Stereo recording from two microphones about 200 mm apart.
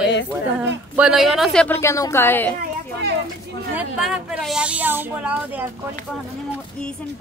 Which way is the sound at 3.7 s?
5° right (ahead or behind).